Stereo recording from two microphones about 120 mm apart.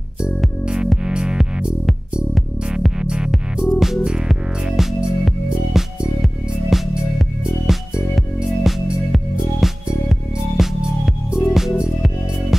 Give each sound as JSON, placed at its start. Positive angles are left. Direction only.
{"t": 0.4, "sound": "music", "side_deg": -5}